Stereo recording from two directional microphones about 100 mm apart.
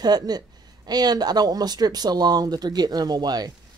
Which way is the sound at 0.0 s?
40° right (ahead or behind).